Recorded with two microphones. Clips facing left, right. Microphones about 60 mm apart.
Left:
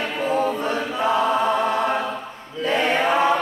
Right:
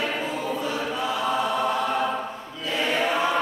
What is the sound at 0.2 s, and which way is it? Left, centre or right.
Choir, left.